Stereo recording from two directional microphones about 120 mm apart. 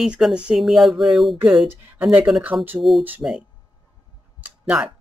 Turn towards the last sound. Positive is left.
turn(degrees=-10)  # may be behind; listen again after turning